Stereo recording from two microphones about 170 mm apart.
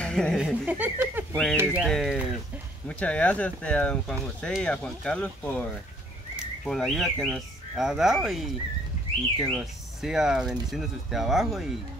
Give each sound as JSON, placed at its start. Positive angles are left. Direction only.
{"t": 0.0, "sound": "speech", "side_deg": 5}
{"t": 1.3, "sound": "speech", "side_deg": 5}
{"t": 1.6, "sound": "speech", "side_deg": -10}